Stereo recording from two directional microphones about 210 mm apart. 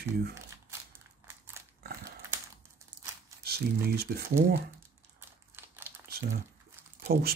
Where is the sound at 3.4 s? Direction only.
50° right (ahead or behind).